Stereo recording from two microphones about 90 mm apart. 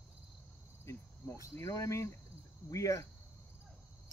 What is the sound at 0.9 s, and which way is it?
Cricket, 35° left (ahead or behind).